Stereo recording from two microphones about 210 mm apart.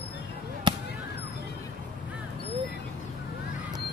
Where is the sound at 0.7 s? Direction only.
20° right (ahead or behind).